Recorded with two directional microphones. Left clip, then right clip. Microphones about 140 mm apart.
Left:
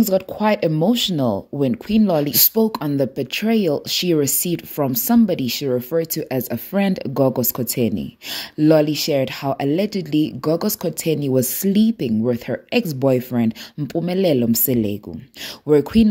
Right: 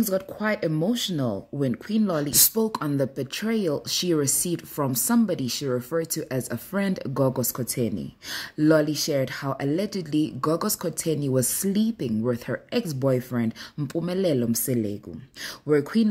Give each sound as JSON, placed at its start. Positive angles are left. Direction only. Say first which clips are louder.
{"t": 0.0, "sound": "speech", "louder": "left 8 dB", "side_deg": 20}
{"t": 13.7, "sound": "speech", "louder": "left 6 dB", "side_deg": 10}